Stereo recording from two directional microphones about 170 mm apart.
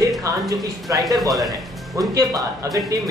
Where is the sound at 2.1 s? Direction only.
20° right (ahead or behind).